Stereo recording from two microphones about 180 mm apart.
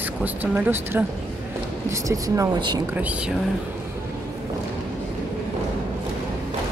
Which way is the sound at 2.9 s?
10° right (ahead or behind).